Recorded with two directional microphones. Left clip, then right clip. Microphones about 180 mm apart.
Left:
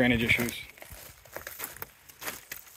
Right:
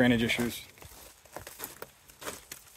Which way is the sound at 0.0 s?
15° right (ahead or behind).